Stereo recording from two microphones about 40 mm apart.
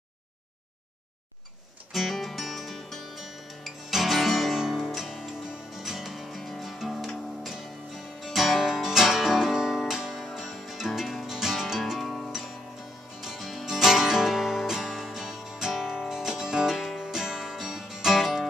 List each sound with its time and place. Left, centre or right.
1.9 s music: centre
10.5 s music: centre
12.0 s music: centre
13.2 s music: centre